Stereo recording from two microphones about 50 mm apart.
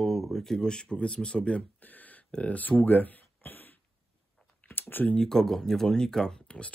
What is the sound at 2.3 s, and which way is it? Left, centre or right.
Speech, left.